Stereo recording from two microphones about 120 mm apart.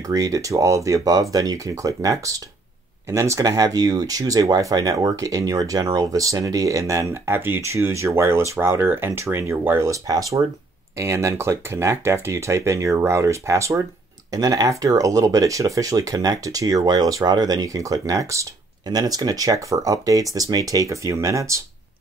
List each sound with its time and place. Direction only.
0.0 s speech: 30° right (ahead or behind)